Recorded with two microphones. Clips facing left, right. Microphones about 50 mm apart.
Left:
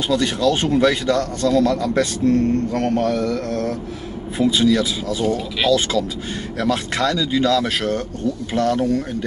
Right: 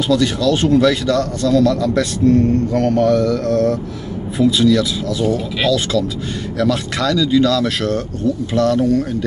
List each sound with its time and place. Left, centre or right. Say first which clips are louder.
0.1 s a man's voice: right 2 dB; left
2.7 s a man's voice: right 5 dB; centre